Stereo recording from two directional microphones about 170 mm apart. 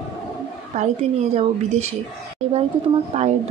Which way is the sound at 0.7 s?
45° right (ahead or behind).